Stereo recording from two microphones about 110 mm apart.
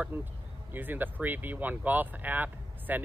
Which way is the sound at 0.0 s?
20° right (ahead or behind).